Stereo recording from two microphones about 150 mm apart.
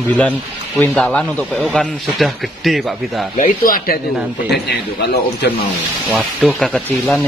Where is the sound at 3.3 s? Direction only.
65° left (ahead or behind).